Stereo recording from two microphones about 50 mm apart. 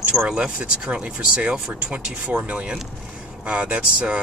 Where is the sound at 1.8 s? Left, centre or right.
Right.